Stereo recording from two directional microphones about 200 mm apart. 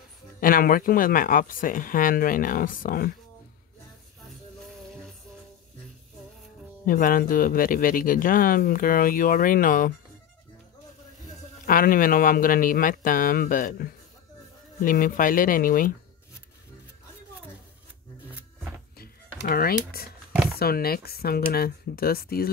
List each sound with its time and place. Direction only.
0.4 s speech: 45° left (ahead or behind)
6.9 s speech: 45° left (ahead or behind)
11.6 s speech: 45° left (ahead or behind)
18.9 s a sound: 50° left (ahead or behind)
20.5 s speech: 50° left (ahead or behind)